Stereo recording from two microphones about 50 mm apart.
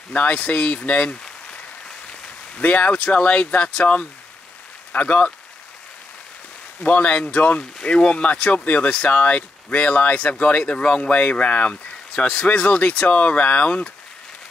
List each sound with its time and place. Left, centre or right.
0.1 s speech: left
2.5 s speech: left
6.8 s speech: left